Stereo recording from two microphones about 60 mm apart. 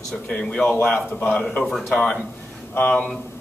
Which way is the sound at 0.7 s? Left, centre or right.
Left.